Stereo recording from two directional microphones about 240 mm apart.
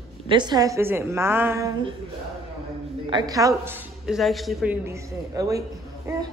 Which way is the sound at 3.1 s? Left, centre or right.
Centre.